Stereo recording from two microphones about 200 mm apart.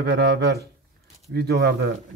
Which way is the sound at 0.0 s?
55° right (ahead or behind).